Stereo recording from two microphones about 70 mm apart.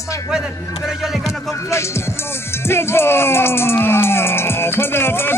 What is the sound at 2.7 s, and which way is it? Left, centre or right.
Music, left.